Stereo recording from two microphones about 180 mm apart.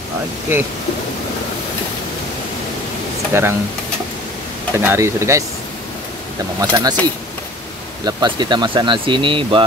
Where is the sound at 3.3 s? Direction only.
15° right (ahead or behind).